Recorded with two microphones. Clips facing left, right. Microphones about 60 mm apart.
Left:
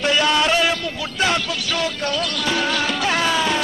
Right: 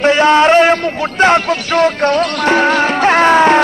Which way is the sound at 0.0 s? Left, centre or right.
Right.